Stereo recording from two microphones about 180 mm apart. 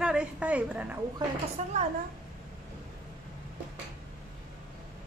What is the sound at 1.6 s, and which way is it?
Speech, 40° right (ahead or behind).